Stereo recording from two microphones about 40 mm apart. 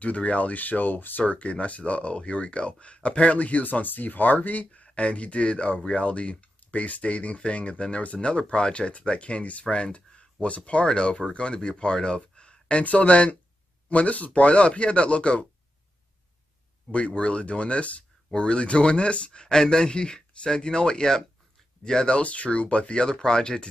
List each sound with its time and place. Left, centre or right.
0.0 s speech: left
1.2 s speech: left
12.8 s speech: left
16.9 s speech: left
22.0 s speech: left